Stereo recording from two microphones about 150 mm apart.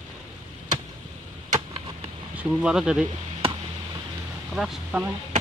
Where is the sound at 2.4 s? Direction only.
5° right (ahead or behind).